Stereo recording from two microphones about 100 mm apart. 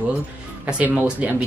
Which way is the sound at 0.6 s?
15° right (ahead or behind).